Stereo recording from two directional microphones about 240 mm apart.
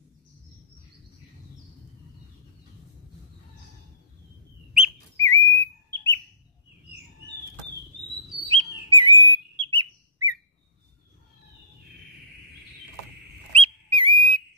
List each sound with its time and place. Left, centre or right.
5.2 s bird: centre
8.5 s bird: centre
13.5 s whistle: right